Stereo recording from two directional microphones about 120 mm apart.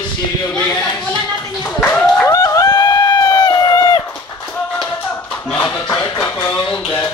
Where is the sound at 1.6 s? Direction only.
15° left (ahead or behind).